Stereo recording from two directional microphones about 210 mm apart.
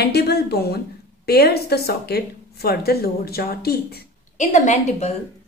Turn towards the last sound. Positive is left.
turn(degrees=35)  # may be behind; listen again after turning